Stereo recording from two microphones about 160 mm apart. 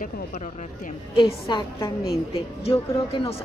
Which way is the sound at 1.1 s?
30° left (ahead or behind).